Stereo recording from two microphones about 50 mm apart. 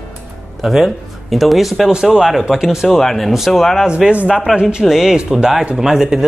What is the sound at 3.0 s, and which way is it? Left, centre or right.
Speech, centre.